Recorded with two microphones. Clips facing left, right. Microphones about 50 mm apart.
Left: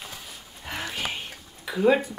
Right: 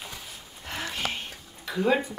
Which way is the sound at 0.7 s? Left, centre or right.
Centre.